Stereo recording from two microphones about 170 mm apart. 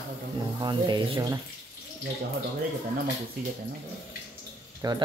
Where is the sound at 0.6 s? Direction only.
25° right (ahead or behind).